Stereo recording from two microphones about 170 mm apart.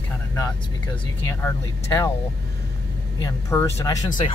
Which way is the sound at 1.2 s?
20° left (ahead or behind).